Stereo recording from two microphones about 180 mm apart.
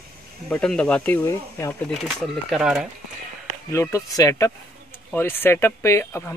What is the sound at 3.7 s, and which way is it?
Speech, 15° left (ahead or behind).